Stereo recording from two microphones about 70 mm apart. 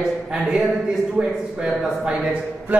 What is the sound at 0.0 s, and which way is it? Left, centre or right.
A man's voice, centre.